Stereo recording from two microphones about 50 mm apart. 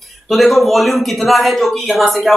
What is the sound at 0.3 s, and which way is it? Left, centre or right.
Speech, centre.